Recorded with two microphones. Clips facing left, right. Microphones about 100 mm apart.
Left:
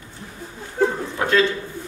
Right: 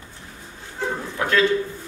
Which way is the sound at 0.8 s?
50° left (ahead or behind).